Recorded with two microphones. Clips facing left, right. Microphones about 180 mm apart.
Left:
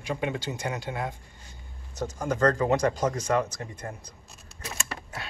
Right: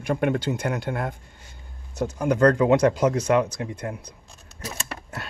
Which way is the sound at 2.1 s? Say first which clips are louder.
Right 6 dB; 70° right (ahead or behind).